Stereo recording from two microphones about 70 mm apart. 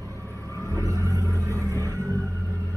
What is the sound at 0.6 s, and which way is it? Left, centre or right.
Vehicle, right.